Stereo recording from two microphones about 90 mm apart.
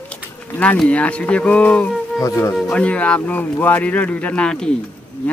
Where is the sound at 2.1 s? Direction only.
35° left (ahead or behind).